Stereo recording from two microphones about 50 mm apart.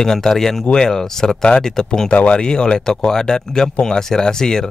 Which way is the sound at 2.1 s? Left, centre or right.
Left.